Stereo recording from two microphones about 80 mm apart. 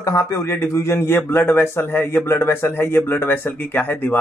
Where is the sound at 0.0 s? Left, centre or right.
Left.